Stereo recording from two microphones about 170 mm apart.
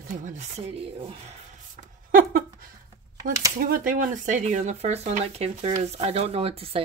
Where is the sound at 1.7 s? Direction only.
55° right (ahead or behind).